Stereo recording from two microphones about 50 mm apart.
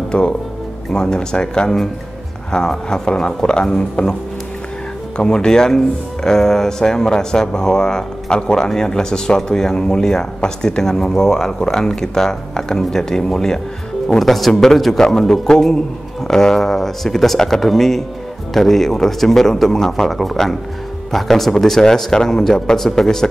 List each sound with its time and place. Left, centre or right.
0.1 s speech: left
0.9 s speech: centre
5.1 s speech: centre